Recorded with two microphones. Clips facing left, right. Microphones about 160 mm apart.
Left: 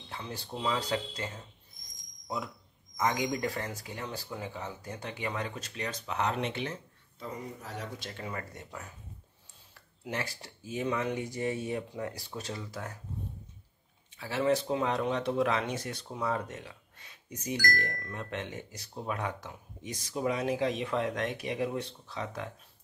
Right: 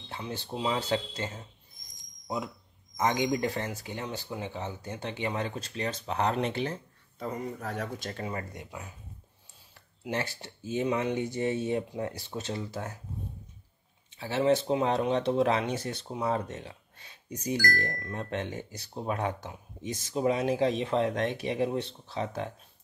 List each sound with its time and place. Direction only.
0.2 s speech: 25° right (ahead or behind)
7.2 s speech: 55° right (ahead or behind)
10.0 s speech: 25° right (ahead or behind)
14.1 s speech: 25° right (ahead or behind)